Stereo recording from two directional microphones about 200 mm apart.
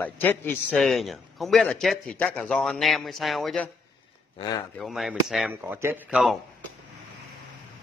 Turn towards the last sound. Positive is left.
turn(degrees=-5)  # may be behind; listen again after turning